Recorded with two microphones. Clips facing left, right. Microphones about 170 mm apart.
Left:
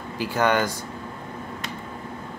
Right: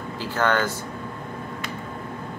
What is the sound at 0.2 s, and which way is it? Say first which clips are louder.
Speech: left 1 dB; 15° left (ahead or behind).